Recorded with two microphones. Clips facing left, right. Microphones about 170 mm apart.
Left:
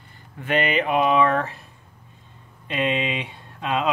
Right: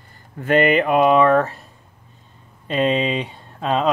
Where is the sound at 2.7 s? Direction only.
40° right (ahead or behind).